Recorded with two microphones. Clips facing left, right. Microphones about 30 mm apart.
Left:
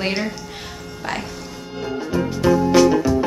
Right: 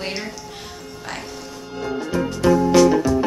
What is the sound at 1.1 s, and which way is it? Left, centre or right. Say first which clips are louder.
Speech: left 6 dB; left.